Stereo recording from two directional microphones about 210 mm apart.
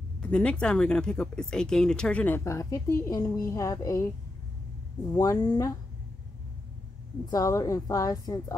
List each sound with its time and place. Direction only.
0.2 s speech: 5° left (ahead or behind)
5.1 s a woman's voice: 20° left (ahead or behind)
7.2 s a woman's voice: 15° left (ahead or behind)